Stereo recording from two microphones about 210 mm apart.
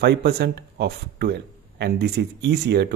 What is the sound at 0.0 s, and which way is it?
Speech, 50° right (ahead or behind).